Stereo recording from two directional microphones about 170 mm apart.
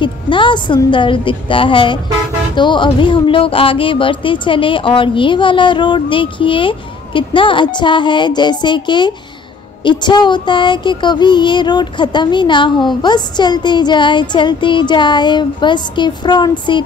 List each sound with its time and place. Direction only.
0.0 s speech: 30° left (ahead or behind)